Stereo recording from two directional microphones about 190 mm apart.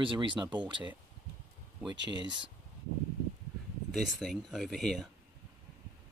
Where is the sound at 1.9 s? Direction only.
70° right (ahead or behind).